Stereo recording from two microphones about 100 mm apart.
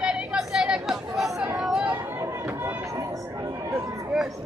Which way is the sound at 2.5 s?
20° right (ahead or behind).